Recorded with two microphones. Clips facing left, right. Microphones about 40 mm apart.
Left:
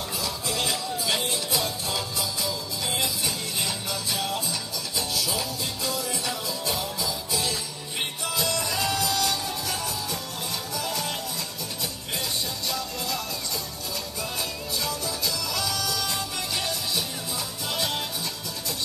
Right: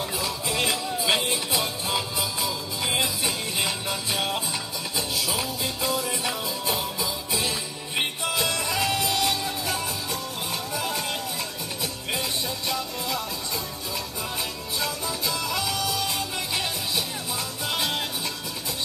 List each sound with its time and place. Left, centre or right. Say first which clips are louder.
0.2 s music: right 1 dB; right
14.8 s music: right 2 dB; right